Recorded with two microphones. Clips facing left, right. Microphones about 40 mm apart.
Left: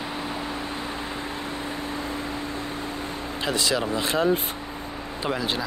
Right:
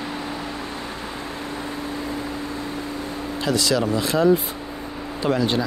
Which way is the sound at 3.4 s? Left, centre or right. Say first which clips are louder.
Right 4 dB; left.